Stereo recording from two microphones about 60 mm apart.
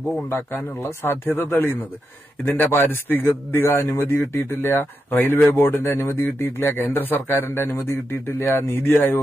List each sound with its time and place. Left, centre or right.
0.3 s speech: left